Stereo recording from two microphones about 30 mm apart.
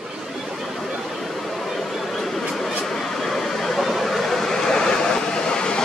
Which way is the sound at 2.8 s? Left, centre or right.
Centre.